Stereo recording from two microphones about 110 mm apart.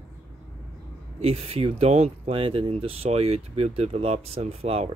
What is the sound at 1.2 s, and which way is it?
Speech, 65° right (ahead or behind).